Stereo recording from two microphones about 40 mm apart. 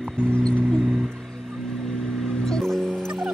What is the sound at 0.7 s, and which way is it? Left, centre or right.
Music, centre.